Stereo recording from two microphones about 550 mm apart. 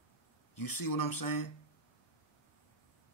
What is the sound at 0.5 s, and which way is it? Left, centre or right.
Speech, left.